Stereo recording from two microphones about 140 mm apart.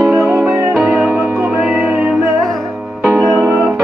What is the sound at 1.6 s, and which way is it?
Music, centre (ahead or behind).